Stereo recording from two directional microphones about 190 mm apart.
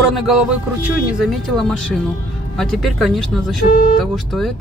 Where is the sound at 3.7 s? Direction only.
45° left (ahead or behind).